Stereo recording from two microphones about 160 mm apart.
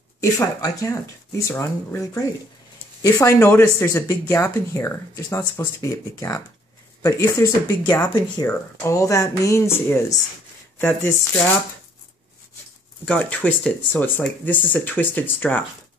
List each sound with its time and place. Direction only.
0.2 s speech: 20° left (ahead or behind)
8.5 s speech: 15° left (ahead or behind)
13.0 s speech: 10° left (ahead or behind)